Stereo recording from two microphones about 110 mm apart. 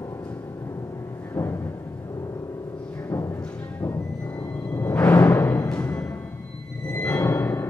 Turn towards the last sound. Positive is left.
turn(degrees=15)  # may be behind; listen again after turning